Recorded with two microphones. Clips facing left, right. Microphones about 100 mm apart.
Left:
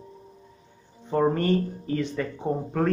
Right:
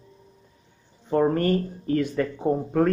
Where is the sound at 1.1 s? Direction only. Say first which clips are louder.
Right 1 dB; centre (ahead or behind).